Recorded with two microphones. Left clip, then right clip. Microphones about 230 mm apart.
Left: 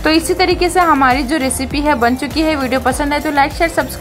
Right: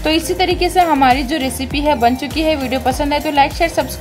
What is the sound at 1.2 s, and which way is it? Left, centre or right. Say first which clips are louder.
A woman's voice: left 2 dB; centre.